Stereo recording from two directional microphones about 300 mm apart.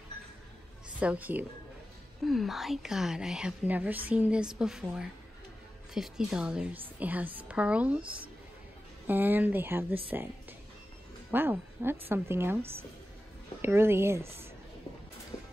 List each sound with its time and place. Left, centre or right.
0.9 s a woman's voice: centre
9.0 s a woman's voice: centre
11.3 s a woman's voice: centre
13.6 s a woman's voice: centre